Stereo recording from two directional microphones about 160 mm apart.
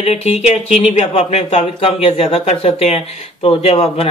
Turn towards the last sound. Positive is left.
turn(degrees=35)  # may be behind; listen again after turning